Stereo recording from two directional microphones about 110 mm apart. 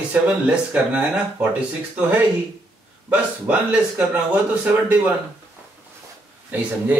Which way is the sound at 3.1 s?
15° right (ahead or behind).